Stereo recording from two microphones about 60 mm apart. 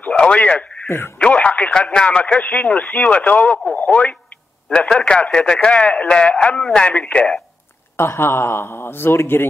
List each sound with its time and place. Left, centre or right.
0.2 s a man's voice: centre
0.8 s speech: left
1.2 s speech: left
4.6 s speech: centre
8.0 s speech: left